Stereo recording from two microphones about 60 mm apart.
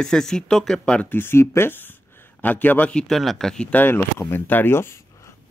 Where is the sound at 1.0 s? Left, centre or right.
Left.